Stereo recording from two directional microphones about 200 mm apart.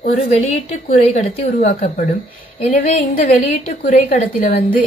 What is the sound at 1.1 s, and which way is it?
Speech, 40° left (ahead or behind).